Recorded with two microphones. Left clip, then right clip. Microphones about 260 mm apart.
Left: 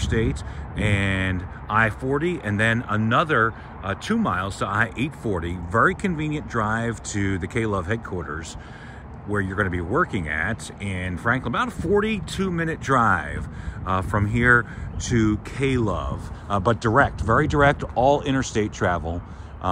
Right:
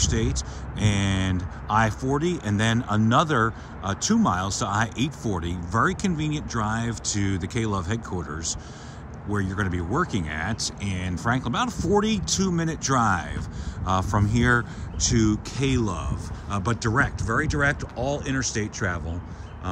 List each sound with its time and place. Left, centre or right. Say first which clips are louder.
0.1 s speech: left 3 dB; centre